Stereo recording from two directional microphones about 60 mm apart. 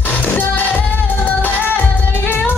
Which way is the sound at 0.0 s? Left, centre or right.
Left.